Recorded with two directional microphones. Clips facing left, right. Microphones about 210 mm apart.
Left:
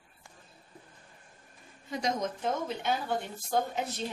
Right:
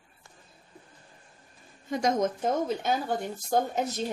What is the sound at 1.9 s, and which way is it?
Speech, 50° right (ahead or behind).